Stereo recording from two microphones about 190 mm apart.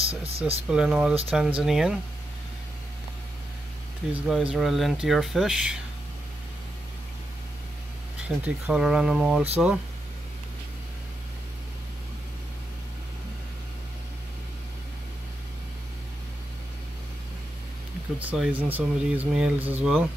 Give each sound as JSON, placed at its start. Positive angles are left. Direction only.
{"t": 0.0, "sound": "speech", "side_deg": -30}
{"t": 0.7, "sound": "speech", "side_deg": -5}
{"t": 4.1, "sound": "speech", "side_deg": -5}
{"t": 8.2, "sound": "speech", "side_deg": -5}
{"t": 18.2, "sound": "speech", "side_deg": -5}